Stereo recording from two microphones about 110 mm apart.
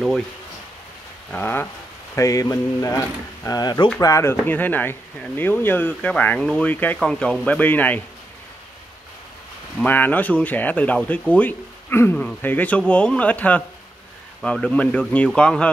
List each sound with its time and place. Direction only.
1.3 s speech: 20° left (ahead or behind)
2.1 s a sound: 30° left (ahead or behind)
4.0 s speech: 25° left (ahead or behind)
9.8 s speech: 15° left (ahead or behind)